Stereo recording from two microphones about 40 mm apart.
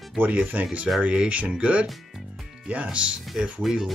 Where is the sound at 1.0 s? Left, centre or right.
Right.